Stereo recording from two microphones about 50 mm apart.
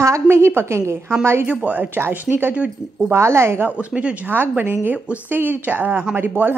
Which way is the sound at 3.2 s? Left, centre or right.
Right.